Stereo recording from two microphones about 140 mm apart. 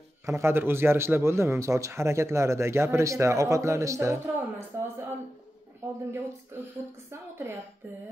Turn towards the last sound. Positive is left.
turn(degrees=-15)  # may be behind; listen again after turning